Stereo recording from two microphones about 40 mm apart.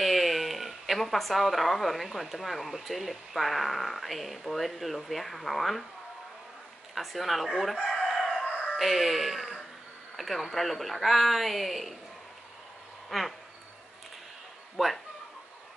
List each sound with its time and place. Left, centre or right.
0.0 s speech: centre
7.0 s speech: centre
8.0 s chicken: centre
8.7 s speech: centre
13.1 s speech: centre
14.8 s speech: centre